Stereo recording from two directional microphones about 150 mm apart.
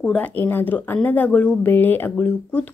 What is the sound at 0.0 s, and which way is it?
Speech, 10° left (ahead or behind).